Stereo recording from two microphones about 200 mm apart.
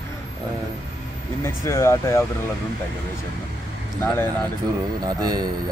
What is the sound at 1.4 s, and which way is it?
Speech, 15° left (ahead or behind).